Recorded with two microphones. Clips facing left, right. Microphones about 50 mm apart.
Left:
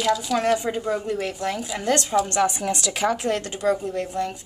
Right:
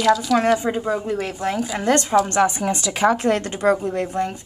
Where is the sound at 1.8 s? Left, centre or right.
Centre.